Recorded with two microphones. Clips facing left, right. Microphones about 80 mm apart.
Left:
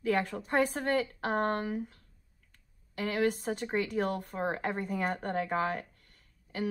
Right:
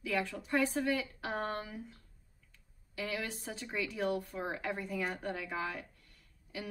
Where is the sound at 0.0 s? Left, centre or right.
Left.